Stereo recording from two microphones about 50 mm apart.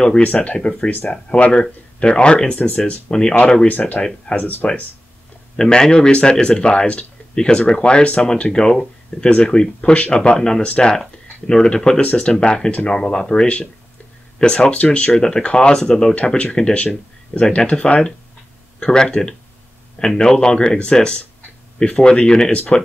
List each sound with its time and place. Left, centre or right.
0.2 s speech: left
4.4 s speech: left
5.6 s speech: centre
16.2 s speech: left
16.7 s speech: left